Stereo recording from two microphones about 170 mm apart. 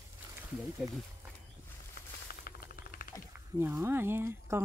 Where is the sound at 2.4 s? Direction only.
60° left (ahead or behind).